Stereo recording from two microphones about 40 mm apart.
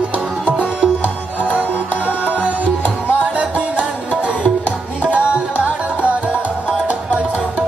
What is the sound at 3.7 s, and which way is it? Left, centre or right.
Music, left.